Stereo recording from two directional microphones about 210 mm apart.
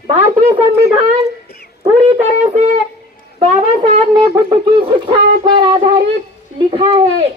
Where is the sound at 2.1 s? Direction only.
35° right (ahead or behind).